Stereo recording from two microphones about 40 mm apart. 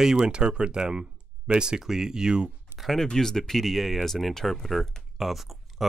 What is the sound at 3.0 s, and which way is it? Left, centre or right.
Speech, centre.